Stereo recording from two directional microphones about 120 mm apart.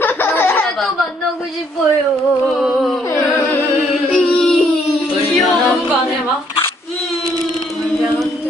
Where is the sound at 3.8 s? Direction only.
Centre (ahead or behind).